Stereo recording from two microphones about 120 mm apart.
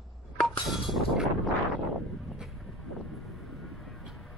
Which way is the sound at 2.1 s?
Centre (ahead or behind).